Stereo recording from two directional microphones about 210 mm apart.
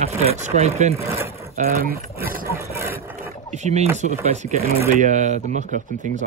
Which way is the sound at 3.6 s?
35° right (ahead or behind).